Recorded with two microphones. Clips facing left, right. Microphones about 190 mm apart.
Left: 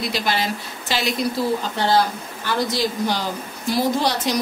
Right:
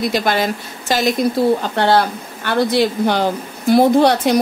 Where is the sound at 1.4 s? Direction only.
60° right (ahead or behind).